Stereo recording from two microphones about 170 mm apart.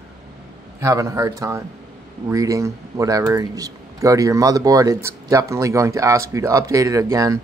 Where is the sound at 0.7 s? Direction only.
20° right (ahead or behind).